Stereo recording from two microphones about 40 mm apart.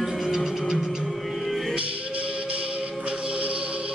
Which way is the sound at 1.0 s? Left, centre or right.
Centre.